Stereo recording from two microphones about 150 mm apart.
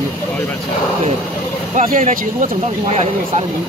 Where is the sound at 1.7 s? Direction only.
60° right (ahead or behind).